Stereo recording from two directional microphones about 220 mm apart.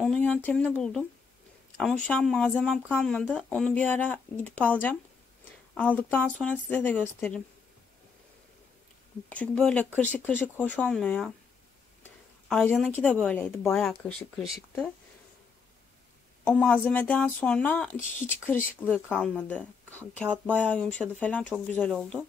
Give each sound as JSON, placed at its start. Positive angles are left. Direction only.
{"t": 0.0, "sound": "speech", "side_deg": 5}
{"t": 2.0, "sound": "speech", "side_deg": 5}
{"t": 5.8, "sound": "speech", "side_deg": 5}
{"t": 9.3, "sound": "speech", "side_deg": 5}
{"t": 16.4, "sound": "speech", "side_deg": 5}